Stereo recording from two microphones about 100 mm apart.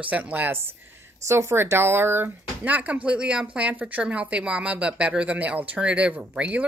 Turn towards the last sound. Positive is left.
turn(degrees=-15)  # may be behind; listen again after turning